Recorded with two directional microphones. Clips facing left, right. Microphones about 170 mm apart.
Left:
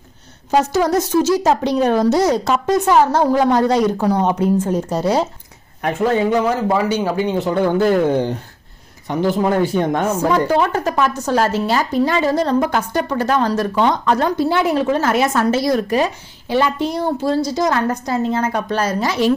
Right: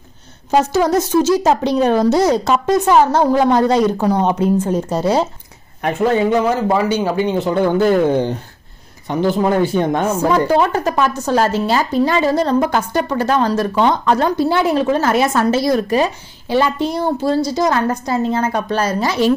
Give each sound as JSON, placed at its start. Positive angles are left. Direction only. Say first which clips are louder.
{"t": 0.5, "sound": "a woman's voice", "louder": "right 1 dB", "side_deg": -25}
{"t": 9.3, "sound": "a woman's voice", "louder": "right 1 dB", "side_deg": -25}